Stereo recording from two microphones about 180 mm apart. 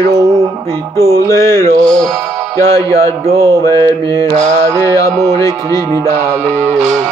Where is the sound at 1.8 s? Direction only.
5° left (ahead or behind).